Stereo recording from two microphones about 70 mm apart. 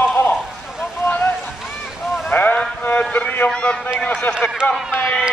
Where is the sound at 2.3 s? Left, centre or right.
Left.